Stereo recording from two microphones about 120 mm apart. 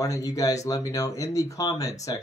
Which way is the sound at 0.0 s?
30° left (ahead or behind).